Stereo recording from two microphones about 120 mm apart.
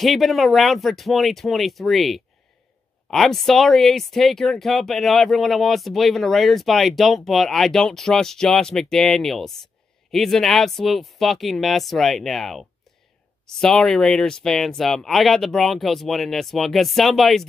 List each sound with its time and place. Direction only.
0.0 s speech: centre (ahead or behind)